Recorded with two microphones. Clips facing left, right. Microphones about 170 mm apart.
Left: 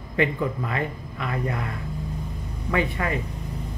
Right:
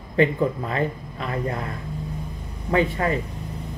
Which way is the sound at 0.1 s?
35° right (ahead or behind).